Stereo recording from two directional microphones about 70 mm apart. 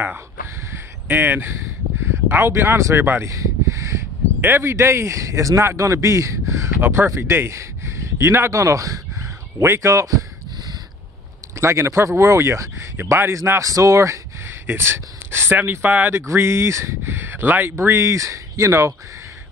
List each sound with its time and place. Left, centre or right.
1.0 s speech: right
3.3 s a sound: right
4.4 s speech: right
9.6 s speech: right
11.5 s speech: right
14.7 s speech: right
16.3 s speech: right
17.1 s a sound: right
17.7 s speech: right